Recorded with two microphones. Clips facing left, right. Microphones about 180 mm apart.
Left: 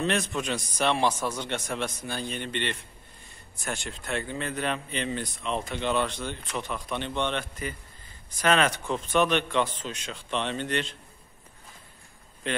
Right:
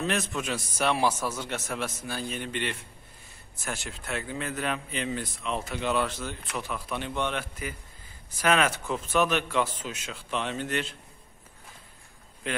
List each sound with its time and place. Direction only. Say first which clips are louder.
0.0 s speech: left 2 dB; centre (ahead or behind)